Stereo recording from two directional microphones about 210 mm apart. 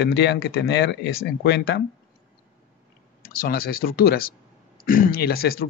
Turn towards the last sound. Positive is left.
turn(degrees=45)  # may be behind; listen again after turning